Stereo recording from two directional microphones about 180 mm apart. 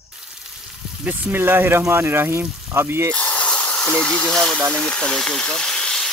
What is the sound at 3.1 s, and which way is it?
Hiss, 5° left (ahead or behind).